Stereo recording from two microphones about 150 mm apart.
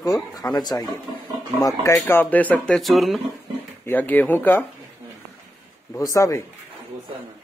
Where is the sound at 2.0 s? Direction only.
10° left (ahead or behind).